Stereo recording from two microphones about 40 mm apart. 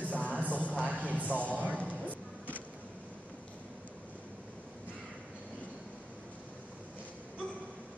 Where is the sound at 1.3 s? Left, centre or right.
Left.